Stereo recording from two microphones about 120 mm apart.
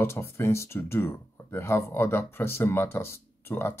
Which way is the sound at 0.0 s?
20° left (ahead or behind).